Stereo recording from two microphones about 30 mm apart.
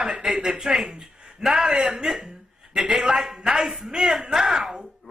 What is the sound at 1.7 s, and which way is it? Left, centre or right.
Speech, right.